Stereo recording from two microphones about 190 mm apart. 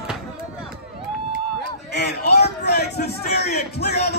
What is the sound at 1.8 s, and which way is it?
A man's voice, 60° left (ahead or behind).